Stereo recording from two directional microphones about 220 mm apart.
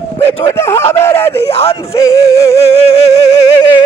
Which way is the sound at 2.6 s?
25° left (ahead or behind).